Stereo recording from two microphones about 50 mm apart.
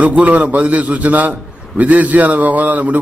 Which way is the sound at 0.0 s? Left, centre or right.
Right.